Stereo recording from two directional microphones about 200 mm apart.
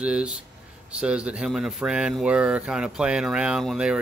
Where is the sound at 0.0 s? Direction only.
5° right (ahead or behind).